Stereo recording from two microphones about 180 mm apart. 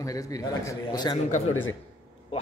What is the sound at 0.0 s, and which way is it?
Speech, 20° left (ahead or behind).